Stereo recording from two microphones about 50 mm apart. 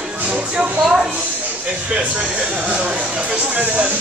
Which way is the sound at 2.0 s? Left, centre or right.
Centre.